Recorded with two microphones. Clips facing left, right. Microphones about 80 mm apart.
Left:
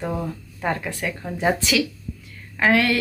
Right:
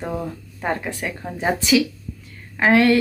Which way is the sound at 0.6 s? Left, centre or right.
Right.